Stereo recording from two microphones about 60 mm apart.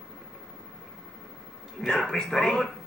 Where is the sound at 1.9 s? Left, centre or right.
Centre.